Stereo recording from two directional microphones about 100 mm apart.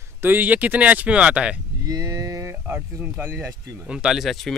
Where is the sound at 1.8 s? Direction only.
35° right (ahead or behind); by 3.5 s 20° right (ahead or behind).